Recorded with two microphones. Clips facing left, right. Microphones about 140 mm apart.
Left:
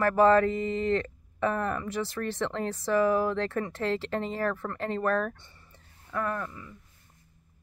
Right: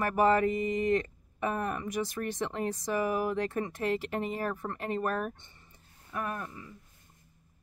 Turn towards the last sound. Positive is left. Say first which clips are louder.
# left 4 dB
turn(degrees=-30)  # may be behind; listen again after turning